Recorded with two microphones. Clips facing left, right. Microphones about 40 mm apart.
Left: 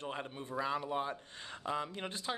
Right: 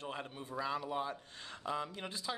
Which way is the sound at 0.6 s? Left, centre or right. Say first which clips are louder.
Left 2 dB; left.